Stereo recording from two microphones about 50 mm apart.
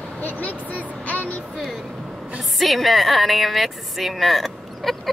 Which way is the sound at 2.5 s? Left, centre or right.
Centre.